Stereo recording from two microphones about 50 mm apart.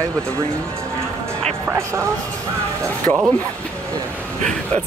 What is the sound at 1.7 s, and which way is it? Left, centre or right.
Speech, right.